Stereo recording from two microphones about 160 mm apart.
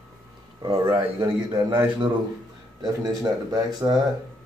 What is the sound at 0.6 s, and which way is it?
Speech, 30° right (ahead or behind).